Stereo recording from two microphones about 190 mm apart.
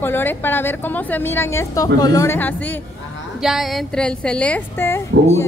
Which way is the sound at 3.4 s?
Centre (ahead or behind).